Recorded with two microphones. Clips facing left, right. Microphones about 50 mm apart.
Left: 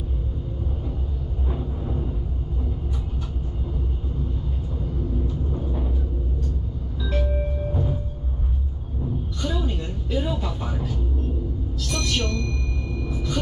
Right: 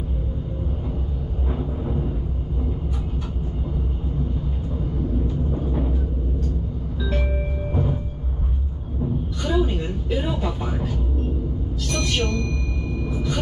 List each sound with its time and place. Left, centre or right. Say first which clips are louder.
1.5 s vehicle: right 3 dB; centre
5.5 s music: right 4 dB; right
9.4 s a sound: right 6 dB; centre
11.9 s music: right 2 dB; centre
13.1 s rumble: right 1 dB; centre